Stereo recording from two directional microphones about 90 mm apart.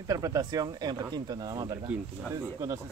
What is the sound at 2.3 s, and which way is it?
Speech, 35° right (ahead or behind).